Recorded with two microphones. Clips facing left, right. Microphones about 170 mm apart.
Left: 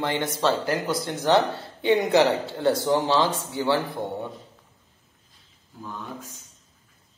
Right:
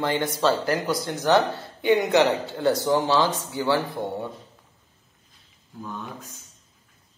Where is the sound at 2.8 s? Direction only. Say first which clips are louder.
Even; 25° left (ahead or behind).